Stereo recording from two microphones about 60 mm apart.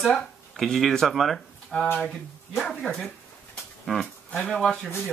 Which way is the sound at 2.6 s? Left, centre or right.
Centre.